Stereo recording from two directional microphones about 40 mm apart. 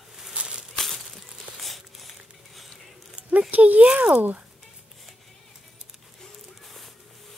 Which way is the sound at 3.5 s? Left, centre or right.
Right.